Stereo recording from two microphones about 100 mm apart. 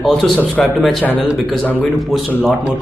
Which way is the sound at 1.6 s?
15° left (ahead or behind).